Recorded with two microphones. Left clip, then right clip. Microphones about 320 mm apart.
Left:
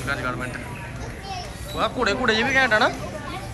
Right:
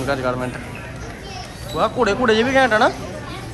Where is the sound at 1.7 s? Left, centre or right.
Centre.